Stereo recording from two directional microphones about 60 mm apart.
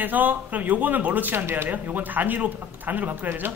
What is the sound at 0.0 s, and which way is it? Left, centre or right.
Speech, right.